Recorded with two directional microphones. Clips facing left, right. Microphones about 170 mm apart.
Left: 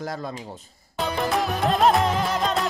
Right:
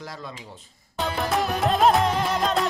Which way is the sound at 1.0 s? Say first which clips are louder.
Left 1 dB; centre (ahead or behind).